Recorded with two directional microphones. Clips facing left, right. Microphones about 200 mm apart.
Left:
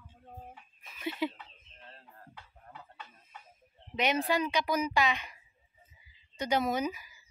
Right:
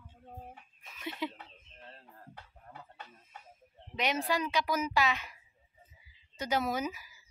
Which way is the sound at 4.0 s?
Centre (ahead or behind).